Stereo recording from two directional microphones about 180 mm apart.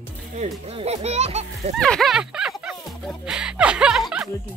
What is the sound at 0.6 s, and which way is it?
Speech, 35° right (ahead or behind).